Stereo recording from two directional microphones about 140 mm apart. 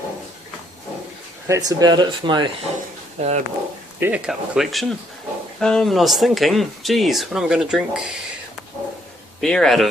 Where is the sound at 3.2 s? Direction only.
50° right (ahead or behind).